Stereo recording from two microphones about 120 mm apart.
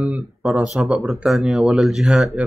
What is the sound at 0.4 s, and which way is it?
Speech, centre (ahead or behind).